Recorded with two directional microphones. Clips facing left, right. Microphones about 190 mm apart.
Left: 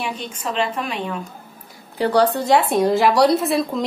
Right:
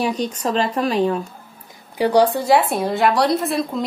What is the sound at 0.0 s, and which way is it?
Speech, 40° right (ahead or behind).